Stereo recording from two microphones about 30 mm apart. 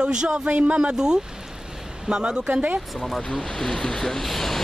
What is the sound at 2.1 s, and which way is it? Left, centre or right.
Speech, right.